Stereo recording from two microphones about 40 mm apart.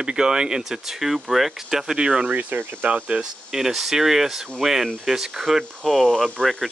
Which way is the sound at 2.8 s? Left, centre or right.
Right.